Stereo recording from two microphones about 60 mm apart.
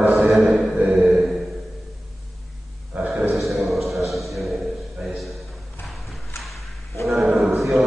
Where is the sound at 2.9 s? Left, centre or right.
Right.